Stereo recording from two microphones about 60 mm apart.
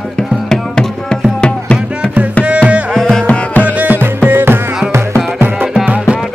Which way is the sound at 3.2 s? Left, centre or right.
Left.